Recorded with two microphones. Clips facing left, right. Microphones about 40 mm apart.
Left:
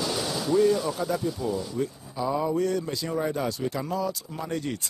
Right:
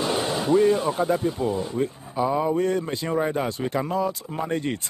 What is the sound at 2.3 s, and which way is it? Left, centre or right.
A man's voice, right.